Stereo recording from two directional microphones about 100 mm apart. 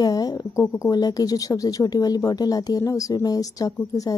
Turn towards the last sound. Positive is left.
turn(degrees=40)  # may be behind; listen again after turning